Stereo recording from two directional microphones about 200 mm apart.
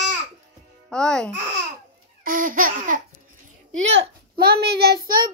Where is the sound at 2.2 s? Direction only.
45° right (ahead or behind).